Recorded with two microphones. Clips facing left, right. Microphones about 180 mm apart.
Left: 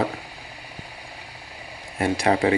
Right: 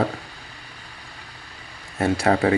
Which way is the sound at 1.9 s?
15° left (ahead or behind).